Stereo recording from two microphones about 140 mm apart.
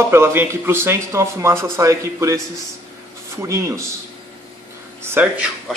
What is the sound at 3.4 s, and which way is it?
Speech, 20° right (ahead or behind).